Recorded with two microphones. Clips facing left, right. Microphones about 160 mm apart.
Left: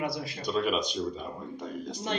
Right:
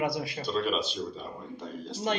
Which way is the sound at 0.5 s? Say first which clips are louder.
Left 2 dB; 10° left (ahead or behind).